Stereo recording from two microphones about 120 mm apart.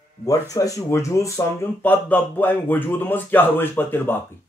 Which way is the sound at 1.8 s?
15° left (ahead or behind).